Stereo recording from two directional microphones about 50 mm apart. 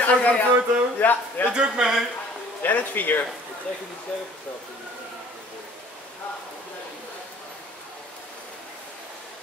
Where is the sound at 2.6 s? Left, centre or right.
Left.